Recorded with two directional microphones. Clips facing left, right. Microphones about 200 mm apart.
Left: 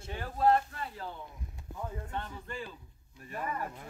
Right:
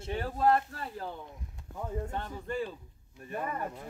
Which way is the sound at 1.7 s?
5° left (ahead or behind).